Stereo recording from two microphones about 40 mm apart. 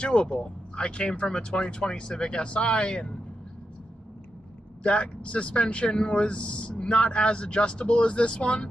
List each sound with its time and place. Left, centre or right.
0.0 s speech: left
4.8 s speech: left